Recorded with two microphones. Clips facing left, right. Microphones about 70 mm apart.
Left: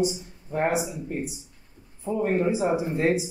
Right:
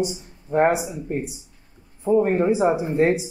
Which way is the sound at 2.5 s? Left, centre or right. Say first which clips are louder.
Right 5 dB; right.